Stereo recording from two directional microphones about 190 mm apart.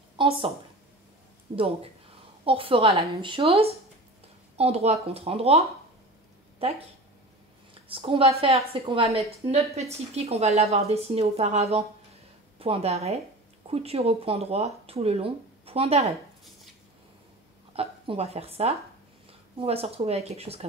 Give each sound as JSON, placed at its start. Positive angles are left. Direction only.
{"t": 0.2, "sound": "a sound", "side_deg": -25}
{"t": 1.5, "sound": "a woman's voice", "side_deg": -30}
{"t": 7.9, "sound": "speech", "side_deg": -30}
{"t": 17.7, "sound": "a woman's voice", "side_deg": -30}